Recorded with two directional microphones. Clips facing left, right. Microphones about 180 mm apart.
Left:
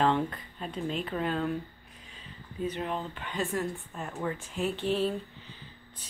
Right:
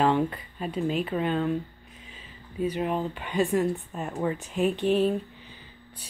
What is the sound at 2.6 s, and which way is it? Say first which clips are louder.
Speech: right 6 dB; 10° right (ahead or behind).